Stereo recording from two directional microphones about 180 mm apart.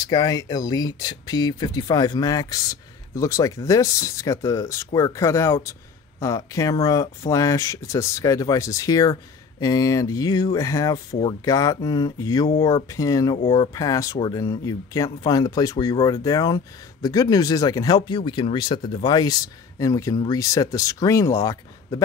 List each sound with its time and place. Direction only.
0.0 s speech: 20° left (ahead or behind)